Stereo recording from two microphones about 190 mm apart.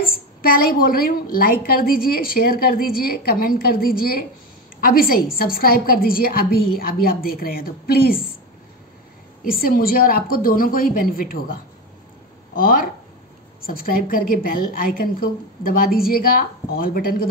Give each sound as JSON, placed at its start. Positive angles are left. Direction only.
{"t": 0.0, "sound": "a sound", "side_deg": 50}
{"t": 1.3, "sound": "a woman's voice", "side_deg": 50}
{"t": 9.4, "sound": "a woman's voice", "side_deg": 50}